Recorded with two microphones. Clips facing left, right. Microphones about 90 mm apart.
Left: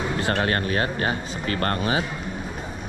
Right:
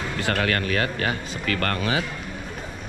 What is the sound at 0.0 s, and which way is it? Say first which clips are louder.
Speech: left 1 dB; 20° left (ahead or behind).